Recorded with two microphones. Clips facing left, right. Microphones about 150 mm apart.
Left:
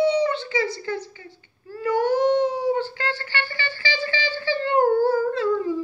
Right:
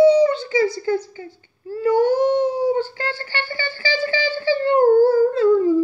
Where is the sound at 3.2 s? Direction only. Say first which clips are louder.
Right 3 dB; 30° right (ahead or behind).